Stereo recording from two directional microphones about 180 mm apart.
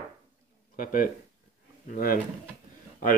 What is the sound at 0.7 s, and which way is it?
A man's voice, 50° left (ahead or behind).